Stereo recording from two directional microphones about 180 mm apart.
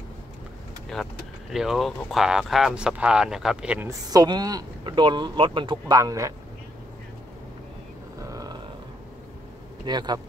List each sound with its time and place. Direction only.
0.9 s speech: centre (ahead or behind)
4.1 s speech: 20° right (ahead or behind)
8.2 s a sound: 20° right (ahead or behind)
9.8 s speech: 25° right (ahead or behind)